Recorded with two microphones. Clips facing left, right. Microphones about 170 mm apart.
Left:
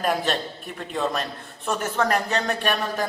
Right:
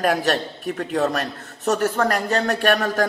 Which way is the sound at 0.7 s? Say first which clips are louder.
Right 4 dB; 60° right (ahead or behind).